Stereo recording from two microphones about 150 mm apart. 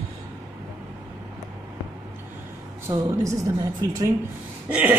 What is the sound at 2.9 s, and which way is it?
A woman's voice, 20° right (ahead or behind).